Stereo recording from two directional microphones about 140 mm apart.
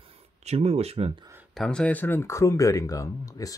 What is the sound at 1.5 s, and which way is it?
Speech, 5° left (ahead or behind).